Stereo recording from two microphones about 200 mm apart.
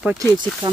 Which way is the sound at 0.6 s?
20° right (ahead or behind).